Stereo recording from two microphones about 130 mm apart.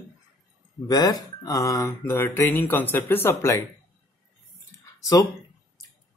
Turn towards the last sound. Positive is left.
turn(degrees=30)  # may be behind; listen again after turning